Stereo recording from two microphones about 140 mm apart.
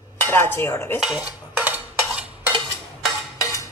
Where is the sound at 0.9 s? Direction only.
5° right (ahead or behind).